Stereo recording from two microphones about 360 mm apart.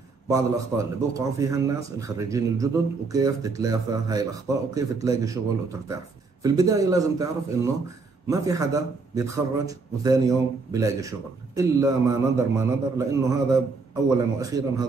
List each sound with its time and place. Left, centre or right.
0.3 s a man's voice: centre